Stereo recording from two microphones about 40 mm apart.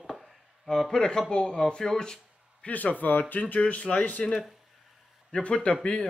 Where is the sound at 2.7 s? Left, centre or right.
Left.